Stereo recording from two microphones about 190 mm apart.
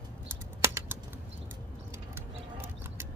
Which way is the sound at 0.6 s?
15° right (ahead or behind).